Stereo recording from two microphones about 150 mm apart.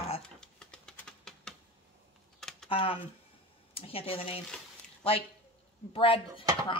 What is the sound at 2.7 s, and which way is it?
Speech, 40° left (ahead or behind).